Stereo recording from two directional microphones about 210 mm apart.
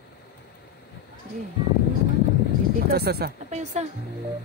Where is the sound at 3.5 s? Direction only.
35° right (ahead or behind).